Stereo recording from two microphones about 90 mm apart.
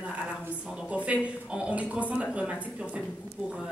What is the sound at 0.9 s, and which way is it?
A woman's voice, 15° right (ahead or behind).